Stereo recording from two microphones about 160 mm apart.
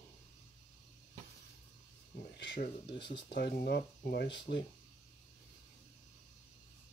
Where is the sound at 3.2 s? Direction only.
85° left.